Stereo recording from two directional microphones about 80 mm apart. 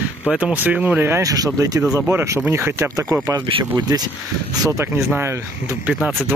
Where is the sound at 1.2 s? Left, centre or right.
Right.